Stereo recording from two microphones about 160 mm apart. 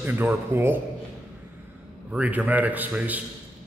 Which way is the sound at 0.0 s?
10° right (ahead or behind).